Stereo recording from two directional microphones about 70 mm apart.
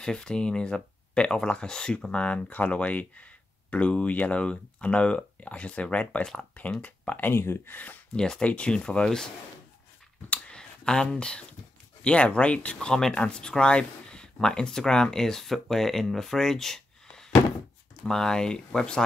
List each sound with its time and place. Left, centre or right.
0.0 s speech: centre
8.2 s speech: centre
10.3 s speech: centre